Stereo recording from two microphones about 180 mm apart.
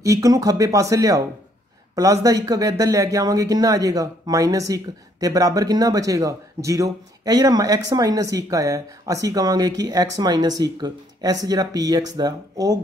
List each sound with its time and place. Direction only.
0.0 s speech: 20° right (ahead or behind)